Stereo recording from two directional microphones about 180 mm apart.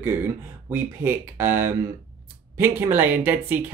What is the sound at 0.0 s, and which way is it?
Speech, 10° right (ahead or behind).